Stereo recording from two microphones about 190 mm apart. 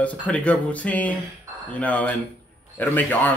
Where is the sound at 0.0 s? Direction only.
5° left (ahead or behind).